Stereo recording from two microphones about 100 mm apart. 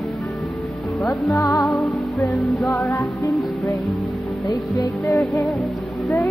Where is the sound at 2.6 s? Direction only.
30° left (ahead or behind).